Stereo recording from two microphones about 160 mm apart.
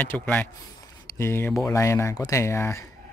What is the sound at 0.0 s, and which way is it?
Speech, 10° left (ahead or behind).